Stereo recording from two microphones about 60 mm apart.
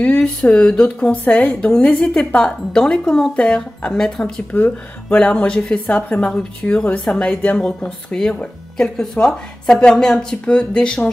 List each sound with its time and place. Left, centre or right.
0.0 s a sound: left
0.4 s speech: centre
0.8 s a woman's voice: left
4.5 s speech: left